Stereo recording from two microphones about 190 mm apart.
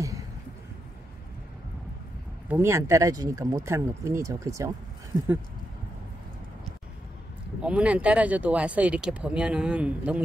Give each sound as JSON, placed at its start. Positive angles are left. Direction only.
{"t": 2.4, "sound": "speech", "side_deg": -10}
{"t": 7.6, "sound": "speech", "side_deg": -5}